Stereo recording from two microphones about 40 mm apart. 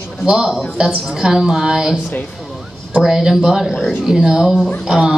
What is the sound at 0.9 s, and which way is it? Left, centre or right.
Speech, centre.